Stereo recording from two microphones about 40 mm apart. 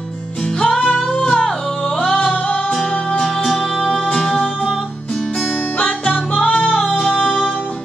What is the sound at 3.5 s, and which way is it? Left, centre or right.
Music, centre.